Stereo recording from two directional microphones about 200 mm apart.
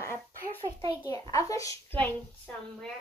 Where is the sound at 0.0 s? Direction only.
10° left (ahead or behind).